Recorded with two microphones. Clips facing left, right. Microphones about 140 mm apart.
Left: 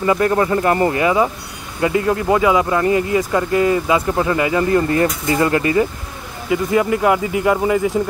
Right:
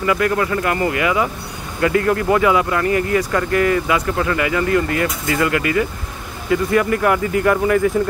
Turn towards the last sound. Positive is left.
turn(degrees=20)  # may be behind; listen again after turning